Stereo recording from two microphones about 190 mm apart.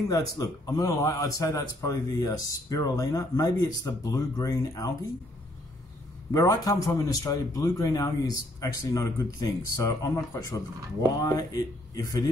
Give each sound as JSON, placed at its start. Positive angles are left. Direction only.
{"t": 0.1, "sound": "a man's voice", "side_deg": 20}
{"t": 6.3, "sound": "a man's voice", "side_deg": 20}